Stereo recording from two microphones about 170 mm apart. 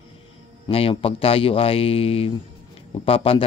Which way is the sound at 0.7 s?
35° left (ahead or behind).